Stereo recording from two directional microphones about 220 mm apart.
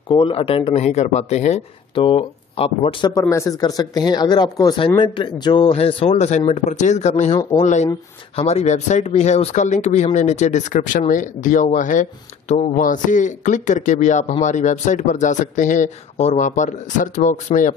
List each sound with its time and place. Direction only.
0.1 s speech: 25° left (ahead or behind)